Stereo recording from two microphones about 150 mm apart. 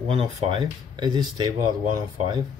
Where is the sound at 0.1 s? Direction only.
30° right (ahead or behind).